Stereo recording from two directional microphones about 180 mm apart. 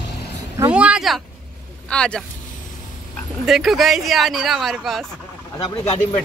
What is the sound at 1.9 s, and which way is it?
Speech, 5° left (ahead or behind).